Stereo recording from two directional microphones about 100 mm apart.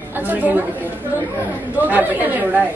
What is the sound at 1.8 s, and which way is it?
Speech, 15° right (ahead or behind).